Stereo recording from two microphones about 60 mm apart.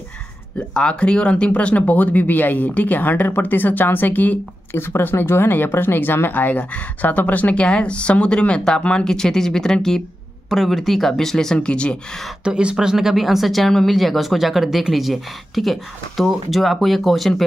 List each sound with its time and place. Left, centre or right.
0.6 s speech: centre
12.4 s speech: centre